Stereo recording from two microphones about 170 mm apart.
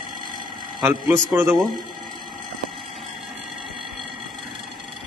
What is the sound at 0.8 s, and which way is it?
Speech, 15° right (ahead or behind).